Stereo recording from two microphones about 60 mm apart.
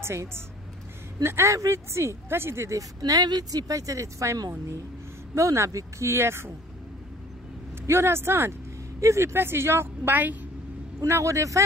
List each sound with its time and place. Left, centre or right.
0.0 s speech: right
3.1 s speech: right
7.8 s speech: right
11.1 s speech: right